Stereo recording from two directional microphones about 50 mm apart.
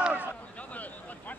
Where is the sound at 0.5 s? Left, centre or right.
Left.